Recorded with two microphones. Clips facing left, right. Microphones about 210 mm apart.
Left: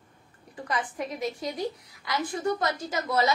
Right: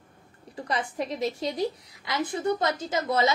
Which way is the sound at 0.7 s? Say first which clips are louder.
Right 2 dB; 25° right (ahead or behind).